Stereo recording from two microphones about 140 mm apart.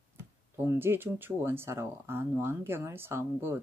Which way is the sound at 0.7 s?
15° right (ahead or behind).